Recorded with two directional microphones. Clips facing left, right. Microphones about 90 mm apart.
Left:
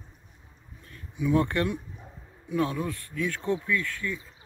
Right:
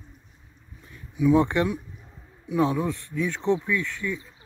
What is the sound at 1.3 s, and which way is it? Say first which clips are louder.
Speech: even; 20° right (ahead or behind).